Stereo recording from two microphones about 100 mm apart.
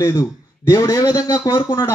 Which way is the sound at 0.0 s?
35° left (ahead or behind).